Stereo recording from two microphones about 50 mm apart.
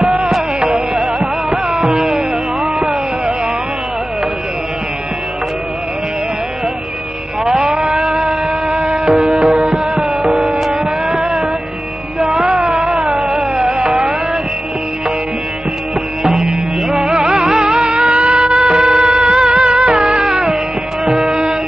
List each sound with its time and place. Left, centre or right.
0.2 s music: centre
1.0 s music: centre
7.4 s a sound: centre
8.2 s music: centre
9.4 s music: centre
16.3 s music: centre
20.2 s music: centre